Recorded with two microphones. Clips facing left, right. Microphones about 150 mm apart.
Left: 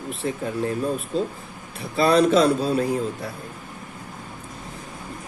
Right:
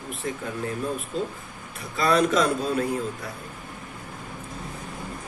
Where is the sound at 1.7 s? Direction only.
30° left (ahead or behind).